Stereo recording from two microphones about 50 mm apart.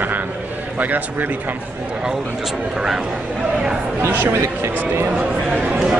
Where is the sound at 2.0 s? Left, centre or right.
Centre.